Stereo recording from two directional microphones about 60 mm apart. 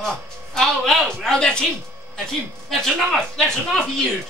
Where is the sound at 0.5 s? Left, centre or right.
Centre.